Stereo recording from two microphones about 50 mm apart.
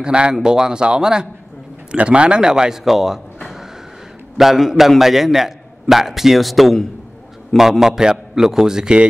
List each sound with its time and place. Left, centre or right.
0.0 s a man's voice: centre
4.4 s a man's voice: centre